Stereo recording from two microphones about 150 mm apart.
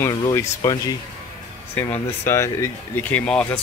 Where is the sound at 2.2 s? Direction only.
20° left (ahead or behind).